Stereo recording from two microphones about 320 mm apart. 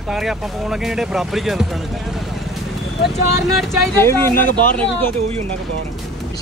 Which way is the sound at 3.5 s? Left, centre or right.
Centre.